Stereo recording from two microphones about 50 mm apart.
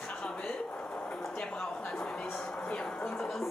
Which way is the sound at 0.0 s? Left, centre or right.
Centre.